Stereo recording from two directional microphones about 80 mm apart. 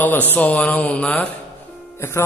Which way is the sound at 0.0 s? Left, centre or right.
Left.